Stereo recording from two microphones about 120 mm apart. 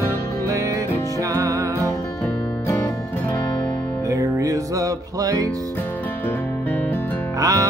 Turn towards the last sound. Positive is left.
turn(degrees=-30)  # may be behind; listen again after turning